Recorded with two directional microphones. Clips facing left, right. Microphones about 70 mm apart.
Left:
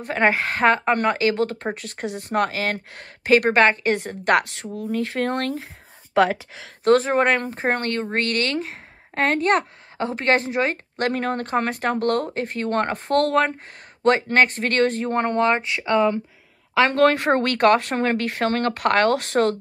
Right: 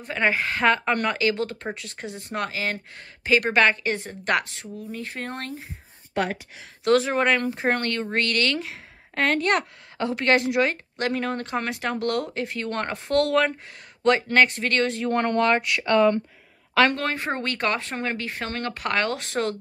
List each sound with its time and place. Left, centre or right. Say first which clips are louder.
0.0 s speech: left 4 dB; left
6.8 s speech: left 3 dB; left
15.0 s speech: left 1 dB; left
16.9 s speech: left 10 dB; left